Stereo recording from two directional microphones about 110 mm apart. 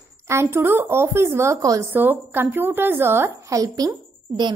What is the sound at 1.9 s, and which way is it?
A woman's voice, 20° right (ahead or behind).